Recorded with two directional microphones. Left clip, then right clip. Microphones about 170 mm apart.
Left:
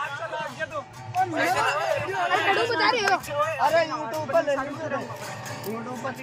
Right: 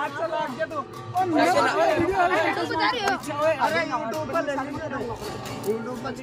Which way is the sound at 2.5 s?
40° left (ahead or behind).